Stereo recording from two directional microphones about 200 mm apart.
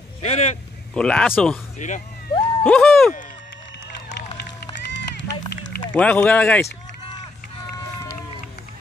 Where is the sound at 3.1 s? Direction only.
40° left (ahead or behind).